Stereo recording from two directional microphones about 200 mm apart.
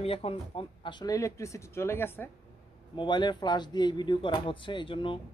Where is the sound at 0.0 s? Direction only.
30° left (ahead or behind); by 2.2 s 10° left (ahead or behind).